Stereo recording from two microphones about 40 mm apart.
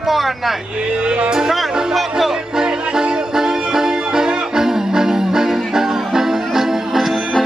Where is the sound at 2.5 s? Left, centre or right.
Centre.